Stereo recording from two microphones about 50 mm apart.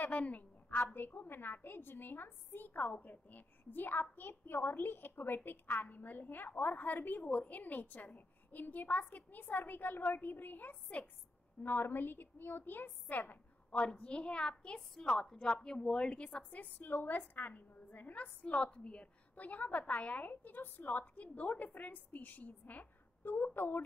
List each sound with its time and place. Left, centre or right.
0.0 s a woman's voice: left
11.6 s a woman's voice: left
13.7 s a woman's voice: left
16.8 s a woman's voice: left